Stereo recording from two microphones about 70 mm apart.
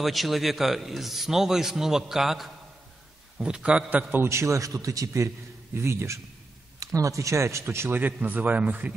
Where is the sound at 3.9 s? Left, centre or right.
Right.